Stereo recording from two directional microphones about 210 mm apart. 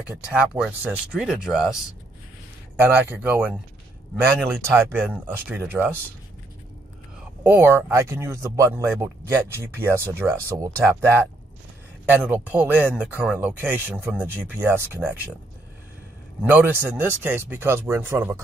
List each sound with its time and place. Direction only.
0.0 s speech: 5° right (ahead or behind)
4.6 s speech: 10° right (ahead or behind)
7.4 s speech: 10° right (ahead or behind)
16.4 s speech: 10° right (ahead or behind)